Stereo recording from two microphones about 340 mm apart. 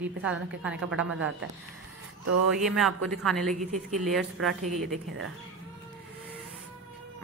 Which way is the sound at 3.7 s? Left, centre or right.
Right.